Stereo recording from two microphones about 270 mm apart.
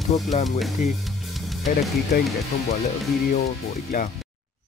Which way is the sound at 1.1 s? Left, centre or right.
Centre.